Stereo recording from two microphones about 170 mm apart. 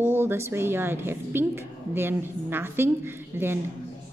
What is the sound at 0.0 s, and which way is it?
A woman's voice, 15° right (ahead or behind).